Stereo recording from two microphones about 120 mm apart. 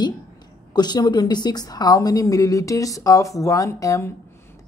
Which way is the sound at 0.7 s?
35° left (ahead or behind).